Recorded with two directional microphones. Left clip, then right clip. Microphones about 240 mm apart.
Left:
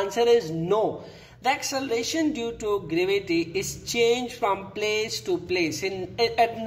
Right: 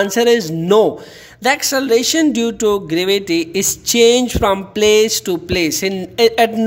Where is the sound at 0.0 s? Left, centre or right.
Right.